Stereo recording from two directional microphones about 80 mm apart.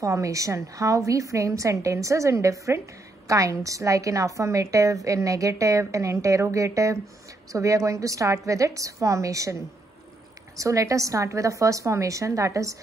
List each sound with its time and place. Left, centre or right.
0.0 s a woman's voice: right
10.6 s a woman's voice: right